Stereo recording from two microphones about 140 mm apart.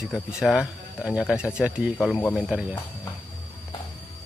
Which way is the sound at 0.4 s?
5° right (ahead or behind).